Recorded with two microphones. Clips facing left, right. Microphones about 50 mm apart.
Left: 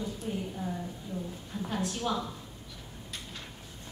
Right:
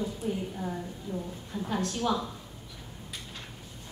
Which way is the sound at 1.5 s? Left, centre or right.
Centre.